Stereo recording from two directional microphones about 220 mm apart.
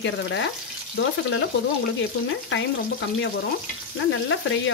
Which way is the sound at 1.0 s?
50° left (ahead or behind).